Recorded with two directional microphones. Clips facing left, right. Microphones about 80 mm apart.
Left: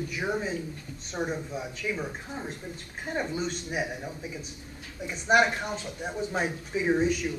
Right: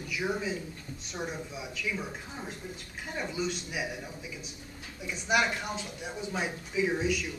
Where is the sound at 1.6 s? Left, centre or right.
Left.